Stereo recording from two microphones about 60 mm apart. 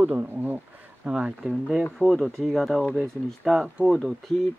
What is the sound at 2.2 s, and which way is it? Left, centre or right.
Speech, centre.